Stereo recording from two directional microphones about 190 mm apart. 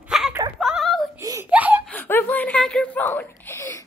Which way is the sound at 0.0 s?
5° right (ahead or behind).